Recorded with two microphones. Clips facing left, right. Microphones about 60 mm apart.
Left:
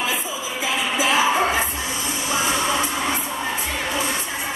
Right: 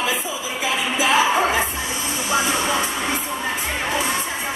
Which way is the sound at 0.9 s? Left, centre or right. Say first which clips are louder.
Right 1 dB; right.